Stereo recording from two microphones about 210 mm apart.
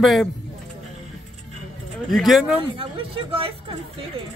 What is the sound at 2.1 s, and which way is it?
Speech, centre (ahead or behind).